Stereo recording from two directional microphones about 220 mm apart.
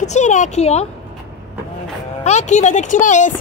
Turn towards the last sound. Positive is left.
turn(degrees=35)  # may be behind; listen again after turning